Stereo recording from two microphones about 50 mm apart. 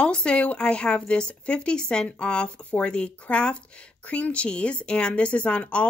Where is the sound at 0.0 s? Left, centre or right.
Centre.